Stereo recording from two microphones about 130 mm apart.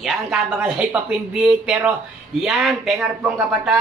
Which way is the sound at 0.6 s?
10° right (ahead or behind).